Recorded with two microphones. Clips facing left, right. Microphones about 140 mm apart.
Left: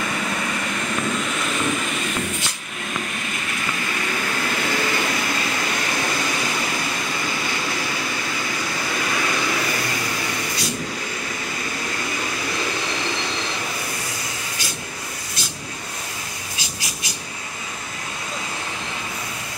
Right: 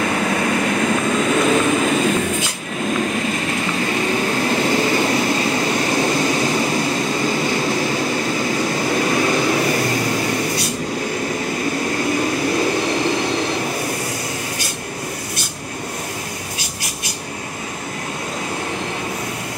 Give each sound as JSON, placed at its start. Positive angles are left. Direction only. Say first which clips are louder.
{"t": 0.0, "sound": "vehicle", "louder": "right 7 dB", "side_deg": -55}
{"t": 4.1, "sound": "vehicle", "louder": "right 6 dB", "side_deg": -30}
{"t": 7.2, "sound": "train", "louder": "right 8 dB", "side_deg": -40}
{"t": 8.8, "sound": "vehicle", "louder": "right 7 dB", "side_deg": -35}